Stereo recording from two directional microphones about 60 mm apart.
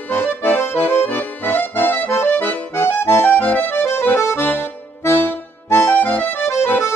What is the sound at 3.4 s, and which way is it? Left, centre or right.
Accordion, left.